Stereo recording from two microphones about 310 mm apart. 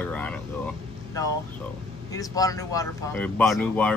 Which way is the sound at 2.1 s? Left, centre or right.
Centre.